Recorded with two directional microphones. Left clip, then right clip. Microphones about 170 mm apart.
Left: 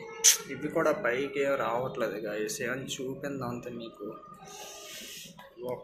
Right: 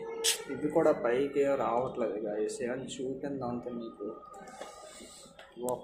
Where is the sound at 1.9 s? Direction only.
5° right (ahead or behind).